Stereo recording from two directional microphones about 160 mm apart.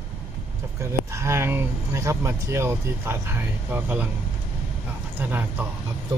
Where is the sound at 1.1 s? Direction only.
15° right (ahead or behind).